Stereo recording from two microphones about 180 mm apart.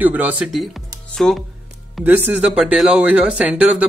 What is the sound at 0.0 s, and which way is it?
Speech, 10° right (ahead or behind).